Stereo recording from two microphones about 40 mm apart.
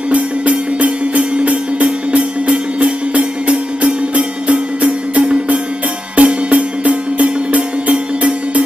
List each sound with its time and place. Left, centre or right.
0.1 s music: right
6.1 s music: right